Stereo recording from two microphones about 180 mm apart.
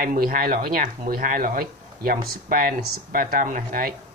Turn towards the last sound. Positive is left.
turn(degrees=-55)  # may be behind; listen again after turning